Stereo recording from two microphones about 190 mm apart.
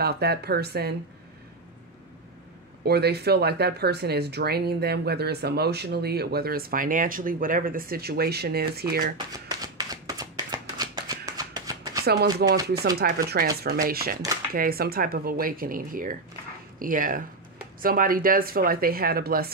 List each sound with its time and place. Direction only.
0.0 s speech: 55° right (ahead or behind)
2.8 s speech: 60° right (ahead or behind)
9.8 s a sound: 20° right (ahead or behind)
12.1 s a woman's voice: 60° right (ahead or behind)